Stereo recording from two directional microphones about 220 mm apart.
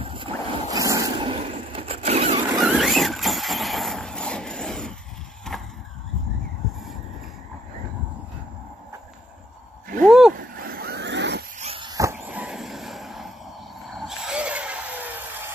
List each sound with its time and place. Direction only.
0.0 s boat: 25° right (ahead or behind)
2.6 s vehicle: centre (ahead or behind)
10.0 s vehicle: centre (ahead or behind)
10.3 s vehicle: 45° right (ahead or behind)
11.6 s a sound: 25° right (ahead or behind); by 13.3 s centre (ahead or behind)
13.8 s vehicle: centre (ahead or behind)